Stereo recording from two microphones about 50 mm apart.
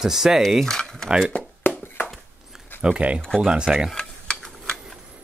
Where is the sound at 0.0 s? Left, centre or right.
Centre.